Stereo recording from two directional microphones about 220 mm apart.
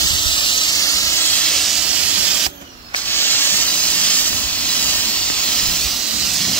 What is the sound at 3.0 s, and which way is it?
Steam, 10° left (ahead or behind).